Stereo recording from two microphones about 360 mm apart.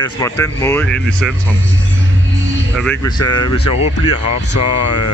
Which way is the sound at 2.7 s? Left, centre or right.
Centre.